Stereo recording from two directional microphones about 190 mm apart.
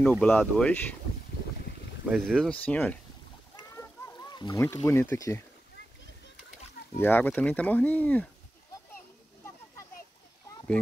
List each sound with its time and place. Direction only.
0.0 s speech: 5° left (ahead or behind)
2.0 s speech: centre (ahead or behind)
3.5 s goose: 15° left (ahead or behind)
5.1 s speech: 15° left (ahead or behind)
7.0 s speech: 10° left (ahead or behind)